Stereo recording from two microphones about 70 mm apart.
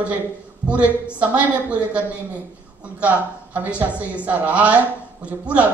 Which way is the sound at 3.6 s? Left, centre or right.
Centre.